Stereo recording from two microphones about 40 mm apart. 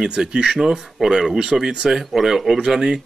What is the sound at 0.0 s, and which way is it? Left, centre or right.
Speech, centre.